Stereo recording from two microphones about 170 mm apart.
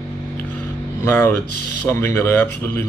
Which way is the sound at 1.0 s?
15° left (ahead or behind).